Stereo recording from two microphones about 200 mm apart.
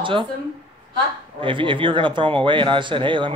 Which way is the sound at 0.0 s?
25° right (ahead or behind).